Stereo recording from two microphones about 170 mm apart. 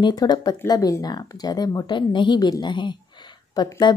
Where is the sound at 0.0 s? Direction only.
20° left (ahead or behind).